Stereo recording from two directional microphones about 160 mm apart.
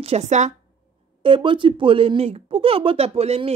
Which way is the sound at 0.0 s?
45° right (ahead or behind).